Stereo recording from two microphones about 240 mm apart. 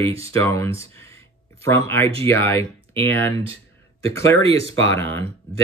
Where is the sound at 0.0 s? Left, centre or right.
Right.